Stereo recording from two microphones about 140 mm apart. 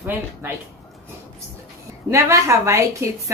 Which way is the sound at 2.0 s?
20° right (ahead or behind).